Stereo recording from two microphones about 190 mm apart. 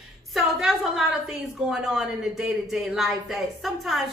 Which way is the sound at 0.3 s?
Centre (ahead or behind).